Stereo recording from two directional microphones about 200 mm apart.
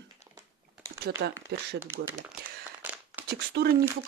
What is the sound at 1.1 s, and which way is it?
Speech, 55° right (ahead or behind).